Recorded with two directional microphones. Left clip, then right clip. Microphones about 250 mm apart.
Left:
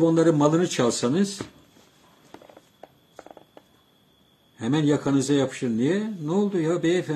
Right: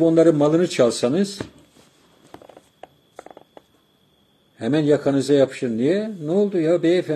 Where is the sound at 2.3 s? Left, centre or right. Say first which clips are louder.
Right 4 dB; right.